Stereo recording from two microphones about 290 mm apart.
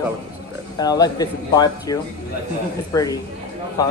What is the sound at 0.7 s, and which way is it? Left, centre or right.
Speech, centre.